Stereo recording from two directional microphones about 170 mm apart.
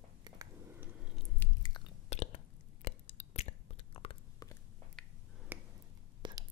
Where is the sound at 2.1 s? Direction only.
40° left (ahead or behind).